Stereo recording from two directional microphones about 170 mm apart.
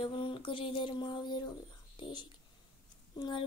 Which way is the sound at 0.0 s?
30° left (ahead or behind).